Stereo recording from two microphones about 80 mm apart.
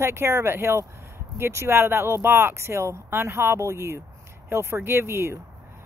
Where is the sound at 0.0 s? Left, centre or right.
Right.